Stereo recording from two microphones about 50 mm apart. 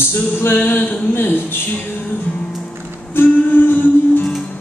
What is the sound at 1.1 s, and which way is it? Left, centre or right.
Music, left.